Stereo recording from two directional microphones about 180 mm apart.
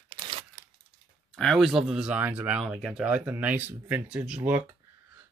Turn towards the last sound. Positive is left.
turn(degrees=-10)  # may be behind; listen again after turning